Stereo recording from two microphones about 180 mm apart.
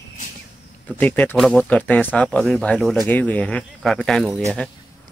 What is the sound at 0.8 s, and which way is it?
Speech, 10° left (ahead or behind).